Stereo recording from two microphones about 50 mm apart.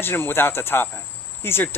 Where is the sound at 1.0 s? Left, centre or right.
Left.